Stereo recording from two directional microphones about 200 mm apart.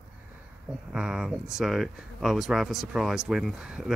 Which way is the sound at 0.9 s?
5° right (ahead or behind).